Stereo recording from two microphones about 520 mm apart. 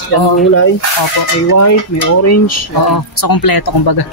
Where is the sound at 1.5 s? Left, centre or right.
Left.